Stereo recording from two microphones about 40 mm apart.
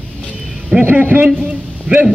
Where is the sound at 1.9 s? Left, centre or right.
Right.